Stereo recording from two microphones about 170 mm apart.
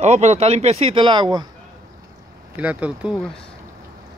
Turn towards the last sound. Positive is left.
turn(degrees=-10)  # may be behind; listen again after turning